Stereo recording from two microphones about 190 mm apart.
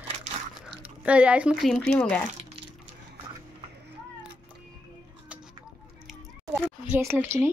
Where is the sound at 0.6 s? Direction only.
5° right (ahead or behind).